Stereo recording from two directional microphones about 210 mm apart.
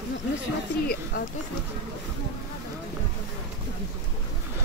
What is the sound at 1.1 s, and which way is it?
Speech, 40° left (ahead or behind).